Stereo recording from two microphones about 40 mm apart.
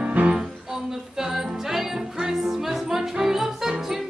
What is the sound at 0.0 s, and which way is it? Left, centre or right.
Music, right.